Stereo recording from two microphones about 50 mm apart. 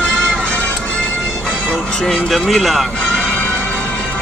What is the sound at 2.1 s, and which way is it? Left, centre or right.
Speech, centre.